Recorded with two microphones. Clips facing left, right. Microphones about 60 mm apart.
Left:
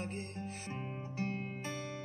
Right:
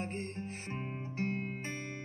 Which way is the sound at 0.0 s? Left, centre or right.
Right.